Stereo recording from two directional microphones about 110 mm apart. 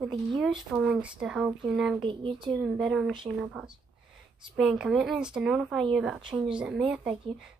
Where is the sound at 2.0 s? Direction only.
50° right (ahead or behind).